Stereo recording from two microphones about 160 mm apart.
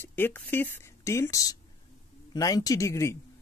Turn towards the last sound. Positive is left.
turn(degrees=20)  # may be behind; listen again after turning